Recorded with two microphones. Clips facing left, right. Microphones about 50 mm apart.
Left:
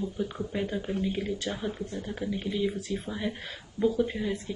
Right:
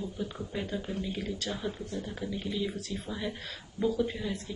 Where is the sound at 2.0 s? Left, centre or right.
Centre.